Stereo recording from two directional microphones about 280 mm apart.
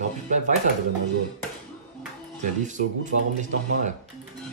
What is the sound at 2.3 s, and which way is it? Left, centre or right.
Speech, right.